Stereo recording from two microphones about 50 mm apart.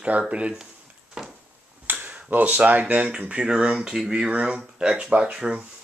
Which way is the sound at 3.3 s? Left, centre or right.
Centre.